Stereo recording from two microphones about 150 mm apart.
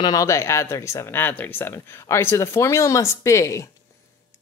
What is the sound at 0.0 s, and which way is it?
Speech, 20° left (ahead or behind).